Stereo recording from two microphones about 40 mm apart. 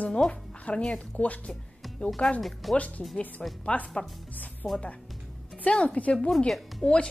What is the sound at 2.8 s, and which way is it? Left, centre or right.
Speech, left.